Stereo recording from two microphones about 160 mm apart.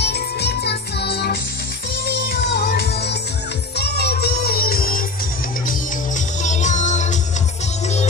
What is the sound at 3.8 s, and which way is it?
Music, 90° left.